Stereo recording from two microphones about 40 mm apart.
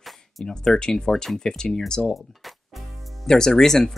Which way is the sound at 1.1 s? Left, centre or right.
Centre.